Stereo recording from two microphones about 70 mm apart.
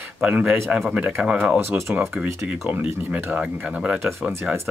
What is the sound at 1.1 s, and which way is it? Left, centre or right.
Speech, centre.